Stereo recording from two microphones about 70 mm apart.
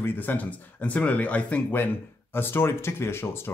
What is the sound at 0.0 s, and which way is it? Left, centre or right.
Speech, left.